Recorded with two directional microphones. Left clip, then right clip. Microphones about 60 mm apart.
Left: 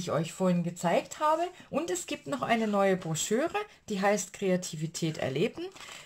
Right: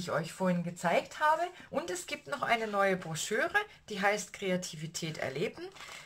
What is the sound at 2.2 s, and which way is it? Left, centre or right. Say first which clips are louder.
Speech: left 2 dB; left.